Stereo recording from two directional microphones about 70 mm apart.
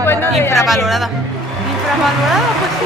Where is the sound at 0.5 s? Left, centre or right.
Centre.